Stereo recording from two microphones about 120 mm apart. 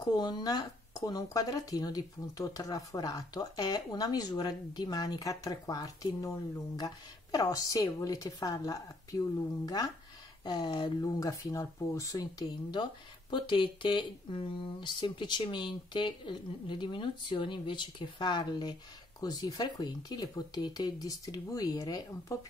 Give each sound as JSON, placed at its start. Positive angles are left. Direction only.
{"t": 0.0, "sound": "speech", "side_deg": 35}
{"t": 13.3, "sound": "speech", "side_deg": 40}